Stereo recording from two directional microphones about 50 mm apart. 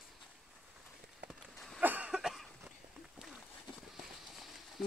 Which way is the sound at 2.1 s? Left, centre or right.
Centre.